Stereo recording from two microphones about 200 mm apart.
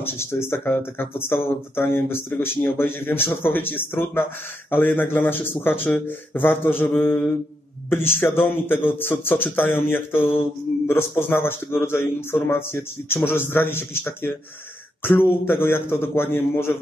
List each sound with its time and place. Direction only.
0.0 s speech: 10° left (ahead or behind)